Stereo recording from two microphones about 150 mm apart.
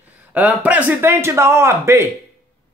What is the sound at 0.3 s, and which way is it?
Speech, 10° right (ahead or behind).